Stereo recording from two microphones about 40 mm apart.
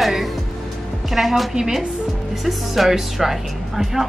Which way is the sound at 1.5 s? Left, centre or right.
Centre.